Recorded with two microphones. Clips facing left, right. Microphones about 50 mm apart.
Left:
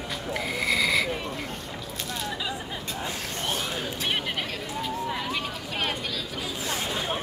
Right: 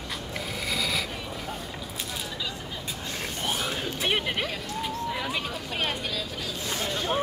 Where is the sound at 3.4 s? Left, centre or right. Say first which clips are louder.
Even; centre.